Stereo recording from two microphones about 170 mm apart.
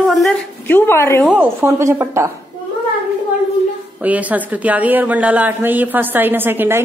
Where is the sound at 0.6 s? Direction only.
15° left (ahead or behind).